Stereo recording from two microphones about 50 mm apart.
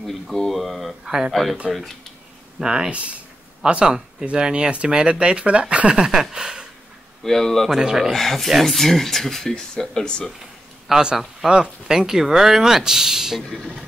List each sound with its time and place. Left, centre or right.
0.0 s speech: centre
1.0 s speech: centre
1.3 s speech: centre
2.6 s speech: centre
2.9 s speech: right
5.9 s speech: centre
7.2 s speech: centre
7.8 s speech: centre
8.1 s speech: centre
10.9 s a man's voice: centre